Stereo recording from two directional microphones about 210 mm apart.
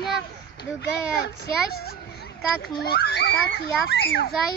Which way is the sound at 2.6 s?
50° left (ahead or behind).